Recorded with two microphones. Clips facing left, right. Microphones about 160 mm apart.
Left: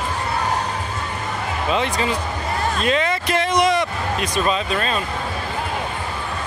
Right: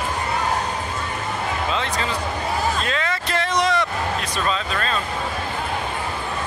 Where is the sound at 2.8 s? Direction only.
20° left (ahead or behind).